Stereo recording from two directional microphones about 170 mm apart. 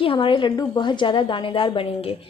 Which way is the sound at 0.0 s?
30° left (ahead or behind).